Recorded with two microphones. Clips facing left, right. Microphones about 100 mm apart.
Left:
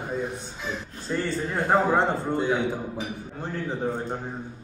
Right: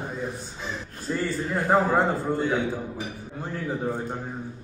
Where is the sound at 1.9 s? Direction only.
15° left (ahead or behind).